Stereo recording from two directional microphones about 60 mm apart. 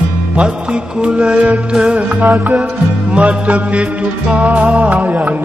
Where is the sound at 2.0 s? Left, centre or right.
Right.